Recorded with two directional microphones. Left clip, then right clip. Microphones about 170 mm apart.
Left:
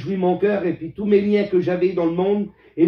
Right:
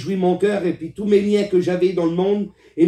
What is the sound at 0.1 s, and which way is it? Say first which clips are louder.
Speech: right 1 dB; 35° right (ahead or behind).